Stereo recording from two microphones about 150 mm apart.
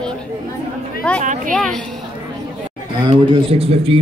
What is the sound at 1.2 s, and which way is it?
Speech, 55° right (ahead or behind).